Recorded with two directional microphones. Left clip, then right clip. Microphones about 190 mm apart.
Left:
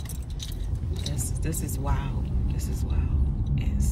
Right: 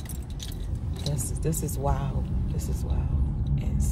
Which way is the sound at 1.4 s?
20° right (ahead or behind).